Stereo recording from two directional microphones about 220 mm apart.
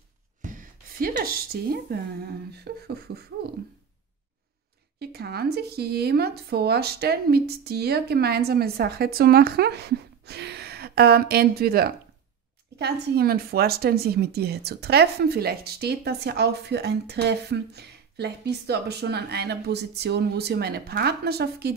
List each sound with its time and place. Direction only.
0.4 s speech: 35° right (ahead or behind)
4.9 s speech: 45° right (ahead or behind)